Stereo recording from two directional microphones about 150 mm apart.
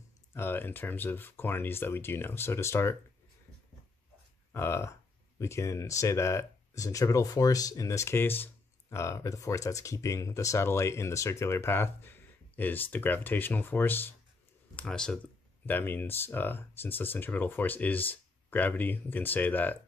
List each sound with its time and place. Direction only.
0.3 s speech: 15° left (ahead or behind)
4.5 s speech: 15° left (ahead or behind)